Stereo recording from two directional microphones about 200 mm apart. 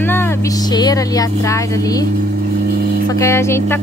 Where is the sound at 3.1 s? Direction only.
15° left (ahead or behind).